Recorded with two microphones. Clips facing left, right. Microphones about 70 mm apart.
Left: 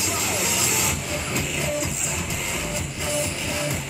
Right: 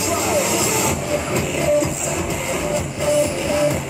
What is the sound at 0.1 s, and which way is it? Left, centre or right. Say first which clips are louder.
Train: right 9 dB; centre.